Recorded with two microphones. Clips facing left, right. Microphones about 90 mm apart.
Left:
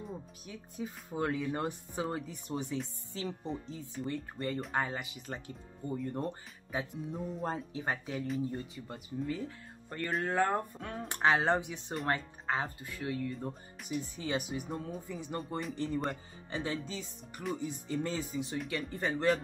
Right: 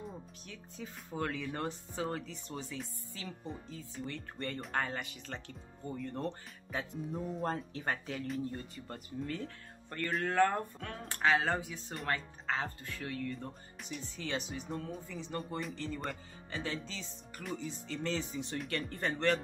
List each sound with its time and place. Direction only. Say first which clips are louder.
0.5 s speech: left 6 dB; 15° left (ahead or behind)
4.1 s speech: left 6 dB; 10° left (ahead or behind)
7.1 s speech: right 4 dB; centre (ahead or behind)
13.3 s speech: left 3 dB; 5° left (ahead or behind)
13.8 s speech: left 5 dB; 15° left (ahead or behind)